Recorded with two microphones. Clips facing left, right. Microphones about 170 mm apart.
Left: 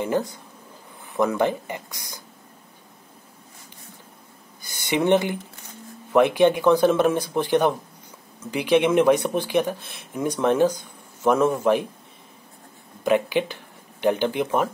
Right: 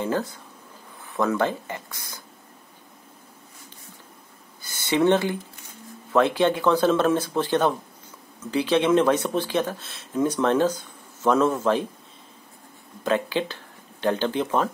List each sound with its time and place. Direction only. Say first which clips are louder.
0.0 s speech: left 2 dB; 15° left (ahead or behind)
4.6 s a sound: right 2 dB; 15° left (ahead or behind)
6.1 s speech: left 3 dB; 15° left (ahead or behind)
13.0 s speech: left 3 dB; 15° left (ahead or behind)